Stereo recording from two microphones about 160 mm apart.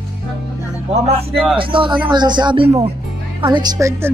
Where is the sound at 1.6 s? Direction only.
30° right (ahead or behind).